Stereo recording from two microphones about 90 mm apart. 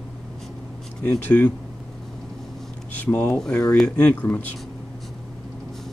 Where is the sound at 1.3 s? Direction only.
20° left (ahead or behind).